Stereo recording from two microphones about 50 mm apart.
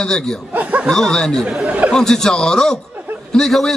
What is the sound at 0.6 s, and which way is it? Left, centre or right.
Chuckle, right.